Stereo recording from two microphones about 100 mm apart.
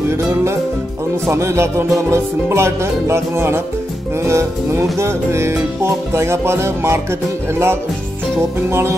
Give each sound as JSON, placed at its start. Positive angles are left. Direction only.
{"t": 0.1, "sound": "music", "side_deg": -25}